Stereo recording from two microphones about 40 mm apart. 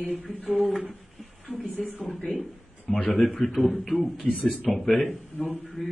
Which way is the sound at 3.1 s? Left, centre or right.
Centre.